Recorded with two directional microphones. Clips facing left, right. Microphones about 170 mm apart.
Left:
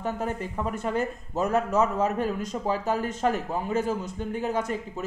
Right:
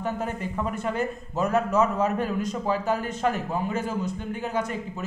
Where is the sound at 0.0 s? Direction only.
35° left (ahead or behind).